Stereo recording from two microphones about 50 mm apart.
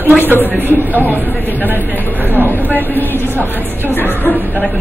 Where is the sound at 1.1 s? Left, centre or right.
Left.